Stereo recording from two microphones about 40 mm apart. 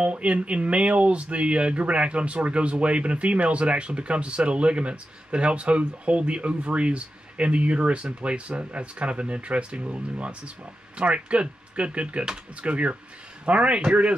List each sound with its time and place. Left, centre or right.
0.0 s speech: right